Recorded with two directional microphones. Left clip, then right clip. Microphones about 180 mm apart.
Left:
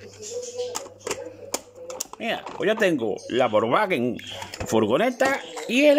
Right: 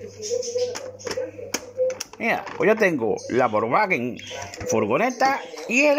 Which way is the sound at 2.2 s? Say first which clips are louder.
Right 4 dB; 15° left (ahead or behind).